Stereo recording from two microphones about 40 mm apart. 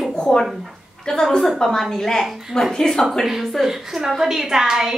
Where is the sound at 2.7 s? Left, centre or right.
Centre.